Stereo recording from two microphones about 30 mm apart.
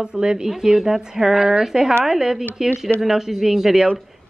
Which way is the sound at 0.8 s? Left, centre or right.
Centre.